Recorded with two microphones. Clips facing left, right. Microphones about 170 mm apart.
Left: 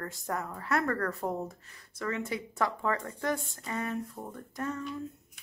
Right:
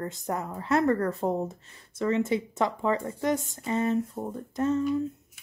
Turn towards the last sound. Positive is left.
turn(degrees=-25)  # may be behind; listen again after turning